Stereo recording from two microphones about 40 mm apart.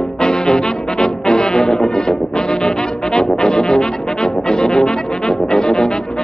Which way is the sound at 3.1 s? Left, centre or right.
Centre.